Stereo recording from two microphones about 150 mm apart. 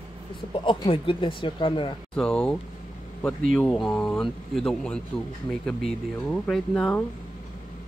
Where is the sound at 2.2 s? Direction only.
5° left (ahead or behind).